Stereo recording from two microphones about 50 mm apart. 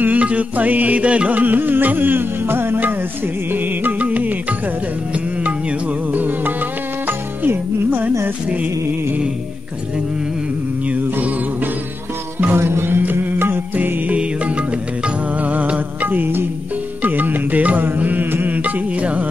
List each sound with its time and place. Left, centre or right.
0.0 s music: right
6.1 s music: right
10.9 s music: right
12.5 s music: right